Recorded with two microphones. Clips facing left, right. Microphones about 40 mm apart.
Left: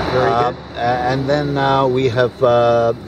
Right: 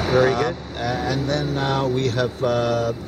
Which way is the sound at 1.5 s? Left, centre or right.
Left.